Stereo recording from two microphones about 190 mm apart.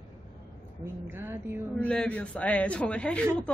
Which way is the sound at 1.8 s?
5° left (ahead or behind).